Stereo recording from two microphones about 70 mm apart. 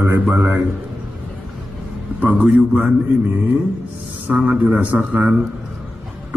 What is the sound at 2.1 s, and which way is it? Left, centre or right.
Speech, right.